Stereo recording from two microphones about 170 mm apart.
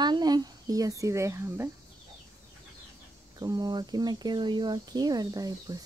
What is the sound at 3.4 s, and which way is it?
Cricket, 25° right (ahead or behind).